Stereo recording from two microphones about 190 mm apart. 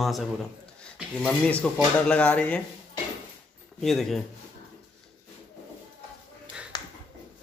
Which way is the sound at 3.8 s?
Centre (ahead or behind).